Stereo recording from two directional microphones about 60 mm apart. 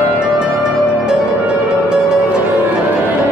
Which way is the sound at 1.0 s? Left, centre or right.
Centre.